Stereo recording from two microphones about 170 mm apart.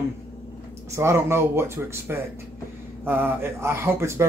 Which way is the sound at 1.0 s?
15° right (ahead or behind).